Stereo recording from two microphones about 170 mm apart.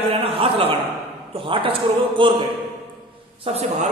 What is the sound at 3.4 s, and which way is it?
Speech, 40° right (ahead or behind).